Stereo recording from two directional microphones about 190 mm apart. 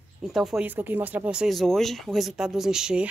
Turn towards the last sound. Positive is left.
turn(degrees=-5)  # may be behind; listen again after turning